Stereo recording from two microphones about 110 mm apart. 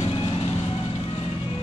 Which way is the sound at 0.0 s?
55° left (ahead or behind).